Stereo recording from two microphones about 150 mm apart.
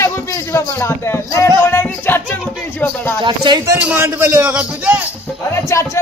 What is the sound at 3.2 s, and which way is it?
Speech, 30° right (ahead or behind).